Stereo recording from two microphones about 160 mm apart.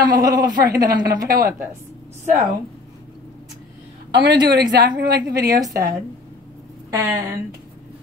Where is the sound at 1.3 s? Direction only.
65° right (ahead or behind).